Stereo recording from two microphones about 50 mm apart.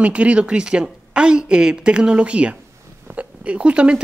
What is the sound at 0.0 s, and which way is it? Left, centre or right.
Speech, right.